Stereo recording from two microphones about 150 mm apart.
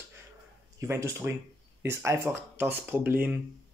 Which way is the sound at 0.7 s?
20° right (ahead or behind).